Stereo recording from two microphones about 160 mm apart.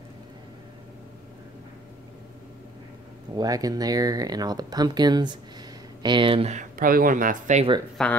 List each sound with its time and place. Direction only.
3.3 s speech: 25° right (ahead or behind)
6.6 s speech: 60° right (ahead or behind)
8.0 s speech: 5° left (ahead or behind)